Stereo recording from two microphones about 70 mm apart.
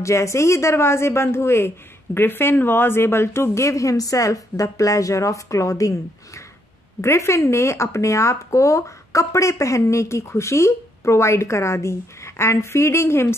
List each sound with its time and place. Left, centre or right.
0.0 s speech: left